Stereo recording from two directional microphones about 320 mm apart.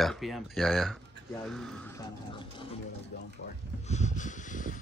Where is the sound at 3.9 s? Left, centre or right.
Left.